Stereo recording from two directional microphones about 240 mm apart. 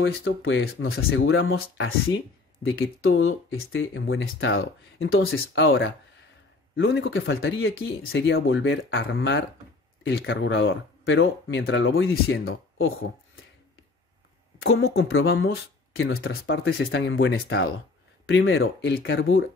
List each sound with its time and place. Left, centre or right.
0.0 s speech: left
14.6 s speech: left
16.0 s speech: left